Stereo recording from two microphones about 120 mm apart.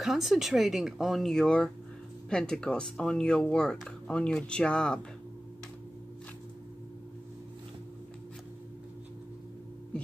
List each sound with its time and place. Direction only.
0.0 s speech: centre (ahead or behind)